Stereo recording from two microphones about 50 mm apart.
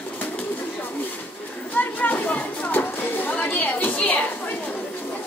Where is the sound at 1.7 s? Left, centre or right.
Left.